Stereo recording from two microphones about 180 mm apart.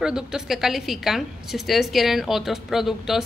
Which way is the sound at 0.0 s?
5° right (ahead or behind).